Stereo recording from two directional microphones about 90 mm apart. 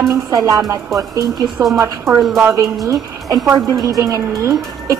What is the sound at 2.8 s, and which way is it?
A woman's voice, 40° right (ahead or behind).